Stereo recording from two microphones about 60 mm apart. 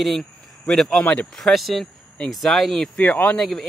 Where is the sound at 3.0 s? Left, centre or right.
Left.